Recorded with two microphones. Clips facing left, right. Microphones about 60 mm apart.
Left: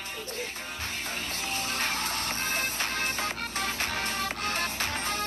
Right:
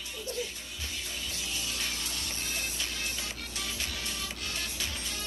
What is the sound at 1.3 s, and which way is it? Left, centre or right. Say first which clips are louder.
Music: left 6 dB; left.